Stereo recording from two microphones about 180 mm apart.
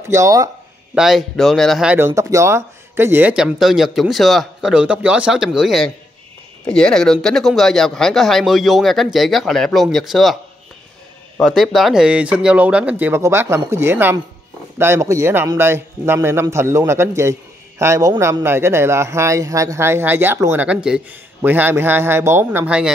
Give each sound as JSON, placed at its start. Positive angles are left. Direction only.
{"t": 0.1, "sound": "a man's voice", "side_deg": -20}
{"t": 0.9, "sound": "speech", "side_deg": 0}
{"t": 2.0, "sound": "speech", "side_deg": -15}
{"t": 11.4, "sound": "a man's voice", "side_deg": 0}